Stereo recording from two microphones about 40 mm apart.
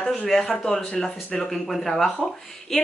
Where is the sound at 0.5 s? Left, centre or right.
Centre.